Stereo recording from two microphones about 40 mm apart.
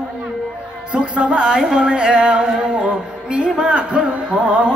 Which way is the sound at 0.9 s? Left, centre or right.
Right.